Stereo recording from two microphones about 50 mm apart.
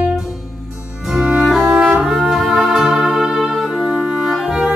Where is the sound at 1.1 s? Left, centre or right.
Centre.